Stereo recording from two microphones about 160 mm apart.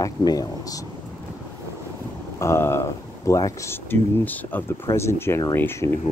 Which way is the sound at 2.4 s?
15° left (ahead or behind).